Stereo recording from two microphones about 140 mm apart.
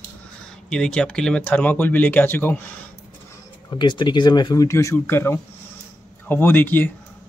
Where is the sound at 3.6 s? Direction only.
35° left (ahead or behind).